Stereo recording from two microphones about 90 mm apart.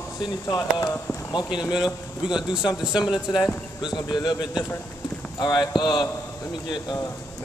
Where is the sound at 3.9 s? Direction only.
55° left (ahead or behind).